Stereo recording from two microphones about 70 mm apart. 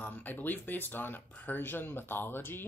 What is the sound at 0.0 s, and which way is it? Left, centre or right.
Speech, left.